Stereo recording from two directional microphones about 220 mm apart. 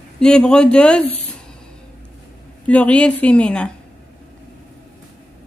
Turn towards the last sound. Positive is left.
turn(degrees=5)  # may be behind; listen again after turning